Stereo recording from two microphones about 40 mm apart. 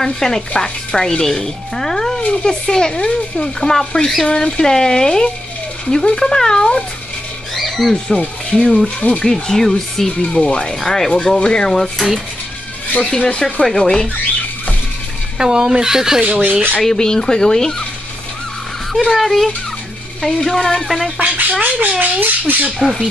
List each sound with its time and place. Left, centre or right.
0.0 s speech: centre
7.5 s speech: centre
8.5 s speech: centre
8.8 s speech: left
9.2 s speech: centre
10.1 s speech: left
13.0 s speech: left
15.3 s speech: centre
16.3 s squawk: right
16.8 s speech: centre
19.0 s speech: centre
21.2 s speech: right